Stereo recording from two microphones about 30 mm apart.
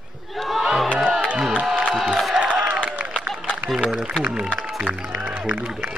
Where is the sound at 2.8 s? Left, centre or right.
Right.